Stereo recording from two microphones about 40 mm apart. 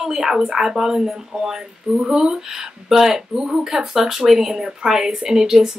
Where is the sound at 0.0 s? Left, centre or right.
Centre.